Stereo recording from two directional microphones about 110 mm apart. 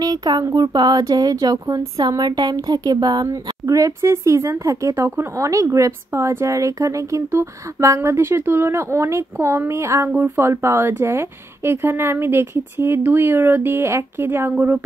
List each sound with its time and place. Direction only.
0.0 s speech: 35° right (ahead or behind); by 14.9 s 20° right (ahead or behind)